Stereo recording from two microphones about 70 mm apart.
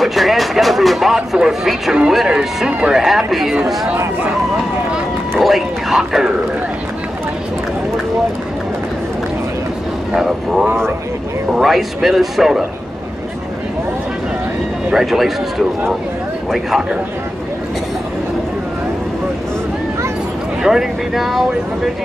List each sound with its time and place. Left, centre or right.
0.0 s speech: centre
5.4 s speech: centre
10.1 s speech: centre
14.9 s speech: centre
16.5 s speech: centre
20.6 s speech: centre